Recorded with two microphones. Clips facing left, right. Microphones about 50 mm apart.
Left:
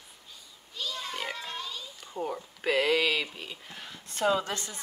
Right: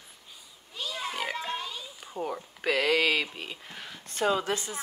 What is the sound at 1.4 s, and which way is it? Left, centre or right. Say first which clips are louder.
Pig: right 3 dB; right.